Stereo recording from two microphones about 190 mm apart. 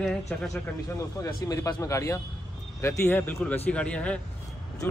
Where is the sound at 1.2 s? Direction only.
20° left (ahead or behind).